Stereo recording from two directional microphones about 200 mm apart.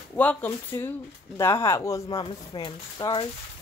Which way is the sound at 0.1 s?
10° left (ahead or behind).